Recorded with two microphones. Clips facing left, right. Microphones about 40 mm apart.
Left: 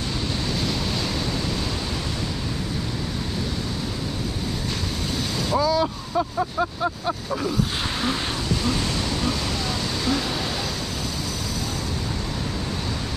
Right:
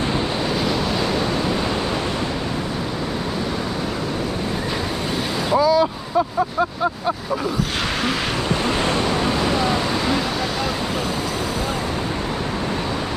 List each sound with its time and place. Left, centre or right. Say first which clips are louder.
5.6 s vehicle: right 5 dB; centre
8.6 s waves: right 6 dB; right